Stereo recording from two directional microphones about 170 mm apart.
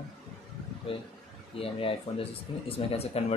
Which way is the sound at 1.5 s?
35° left (ahead or behind).